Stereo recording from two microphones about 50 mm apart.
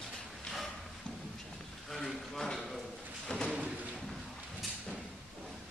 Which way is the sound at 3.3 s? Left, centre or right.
Centre.